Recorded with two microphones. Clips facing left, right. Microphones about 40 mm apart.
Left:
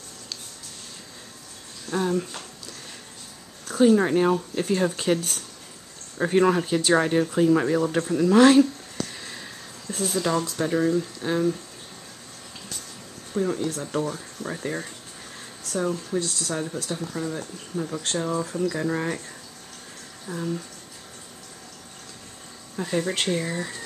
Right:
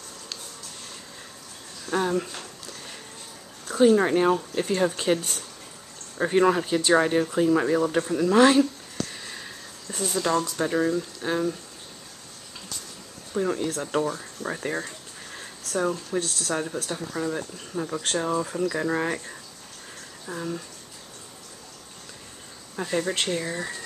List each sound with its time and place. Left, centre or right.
1.9 s speech: centre
3.6 s speech: centre
13.3 s speech: centre
15.3 s a sound: centre
16.5 s speech: centre
22.8 s speech: centre